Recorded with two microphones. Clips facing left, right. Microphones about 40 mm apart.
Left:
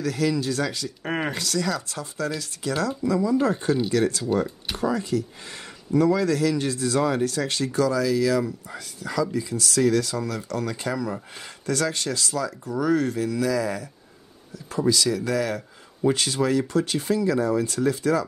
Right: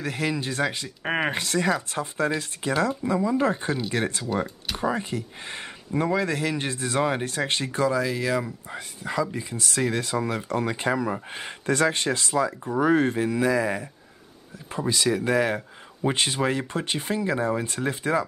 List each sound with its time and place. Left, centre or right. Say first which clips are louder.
0.0 s speech: left 3 dB; right